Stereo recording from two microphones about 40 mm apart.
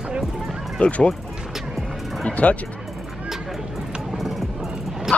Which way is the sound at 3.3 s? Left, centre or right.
Centre.